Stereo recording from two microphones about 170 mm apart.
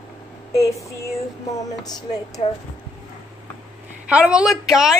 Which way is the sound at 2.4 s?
35° left (ahead or behind).